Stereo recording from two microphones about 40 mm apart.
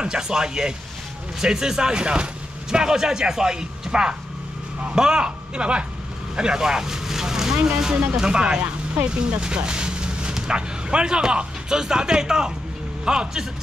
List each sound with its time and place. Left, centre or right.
0.0 s speech: centre